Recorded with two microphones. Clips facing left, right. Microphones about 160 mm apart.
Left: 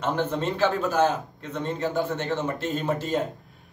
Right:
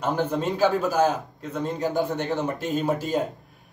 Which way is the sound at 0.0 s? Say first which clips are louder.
Right 1 dB; 10° right (ahead or behind).